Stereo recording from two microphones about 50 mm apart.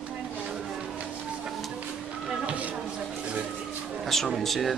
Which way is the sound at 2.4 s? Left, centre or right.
Right.